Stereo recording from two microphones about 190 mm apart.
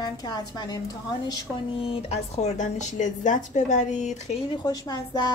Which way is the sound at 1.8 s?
30° left (ahead or behind).